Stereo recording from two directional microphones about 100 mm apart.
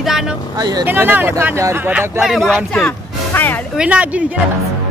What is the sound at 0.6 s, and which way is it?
Speech, 40° right (ahead or behind).